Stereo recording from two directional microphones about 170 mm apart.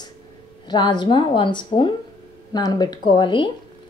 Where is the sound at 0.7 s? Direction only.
25° left (ahead or behind).